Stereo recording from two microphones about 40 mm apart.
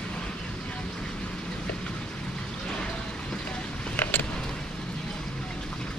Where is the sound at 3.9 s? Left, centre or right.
Left.